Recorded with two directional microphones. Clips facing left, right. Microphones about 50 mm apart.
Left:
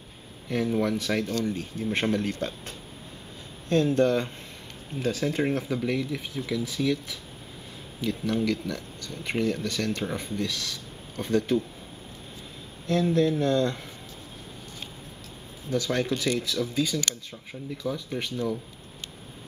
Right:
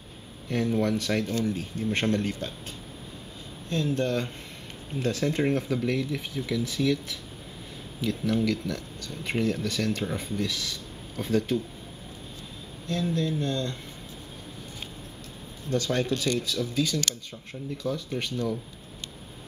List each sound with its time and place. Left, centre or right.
0.5 s speech: centre
3.6 s speech: left
4.9 s speech: centre
12.8 s speech: left
15.7 s speech: centre